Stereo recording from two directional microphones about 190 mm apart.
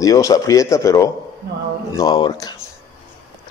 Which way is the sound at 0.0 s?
20° left (ahead or behind).